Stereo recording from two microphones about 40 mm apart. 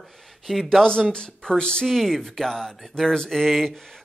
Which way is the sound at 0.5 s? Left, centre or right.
Centre.